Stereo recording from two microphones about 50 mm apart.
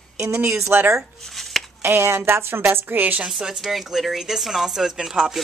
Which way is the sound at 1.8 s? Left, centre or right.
Right.